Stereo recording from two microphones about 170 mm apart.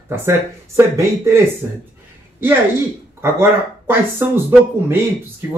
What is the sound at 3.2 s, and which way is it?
Speech, 15° right (ahead or behind).